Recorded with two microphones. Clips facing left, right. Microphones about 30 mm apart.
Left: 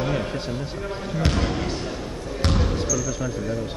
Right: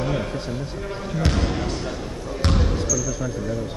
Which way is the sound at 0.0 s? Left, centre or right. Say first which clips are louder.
Even; centre.